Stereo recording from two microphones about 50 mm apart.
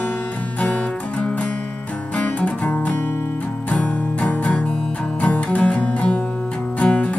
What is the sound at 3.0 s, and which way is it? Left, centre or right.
Music, left.